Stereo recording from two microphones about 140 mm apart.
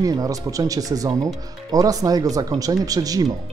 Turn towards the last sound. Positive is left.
turn(degrees=-25)  # may be behind; listen again after turning